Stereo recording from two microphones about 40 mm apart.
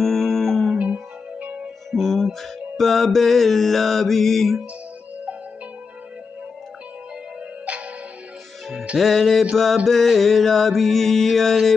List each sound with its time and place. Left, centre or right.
0.0 s music: centre
1.4 s music: right
1.9 s music: centre
8.9 s mantra: centre